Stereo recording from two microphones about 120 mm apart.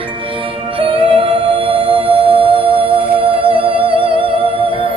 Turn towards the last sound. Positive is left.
turn(degrees=-50)  # may be behind; listen again after turning